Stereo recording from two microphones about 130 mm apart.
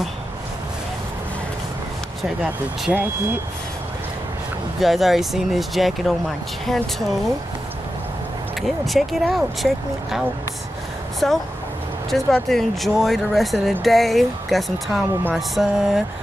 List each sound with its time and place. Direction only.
2.2 s speech: 5° right (ahead or behind)
4.7 s speech: centre (ahead or behind)
8.5 s speech: centre (ahead or behind)
11.2 s speech: 5° left (ahead or behind)